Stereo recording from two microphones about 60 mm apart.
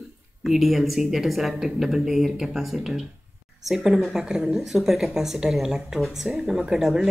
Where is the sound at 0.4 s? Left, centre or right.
Centre.